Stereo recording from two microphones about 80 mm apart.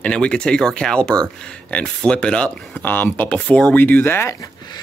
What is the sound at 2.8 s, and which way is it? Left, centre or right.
Speech, left.